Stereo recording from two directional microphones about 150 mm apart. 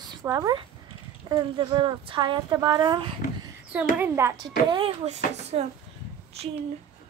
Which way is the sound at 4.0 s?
20° right (ahead or behind).